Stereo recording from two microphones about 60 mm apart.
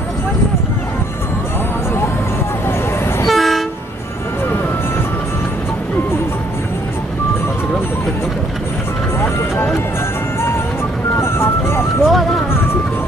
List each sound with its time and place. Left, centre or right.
3.3 s train: centre
11.1 s vehicle: left
12.0 s vehicle: centre